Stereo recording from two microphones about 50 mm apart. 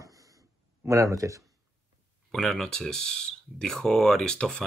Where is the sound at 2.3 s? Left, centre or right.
Centre.